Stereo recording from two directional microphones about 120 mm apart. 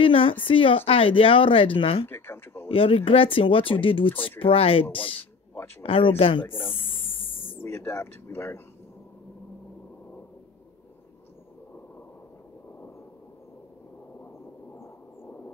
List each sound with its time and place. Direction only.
0.0 s a woman's voice: 50° left (ahead or behind)
2.0 s speech: 20° left (ahead or behind)
2.7 s a woman's voice: 50° left (ahead or behind)
7.6 s speech: 20° left (ahead or behind)
14.7 s a sound: 15° left (ahead or behind)